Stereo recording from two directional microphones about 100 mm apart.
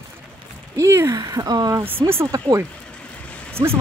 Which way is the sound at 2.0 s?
25° right (ahead or behind).